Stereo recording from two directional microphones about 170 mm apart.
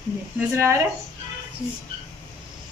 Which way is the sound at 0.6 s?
15° right (ahead or behind).